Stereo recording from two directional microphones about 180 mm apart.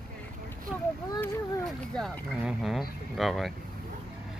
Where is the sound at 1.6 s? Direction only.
5° left (ahead or behind).